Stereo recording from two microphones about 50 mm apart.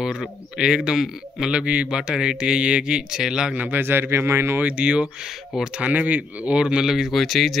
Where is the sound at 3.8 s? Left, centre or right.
Right.